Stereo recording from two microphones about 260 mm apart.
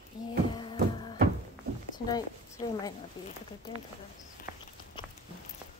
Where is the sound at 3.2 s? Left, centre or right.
Centre.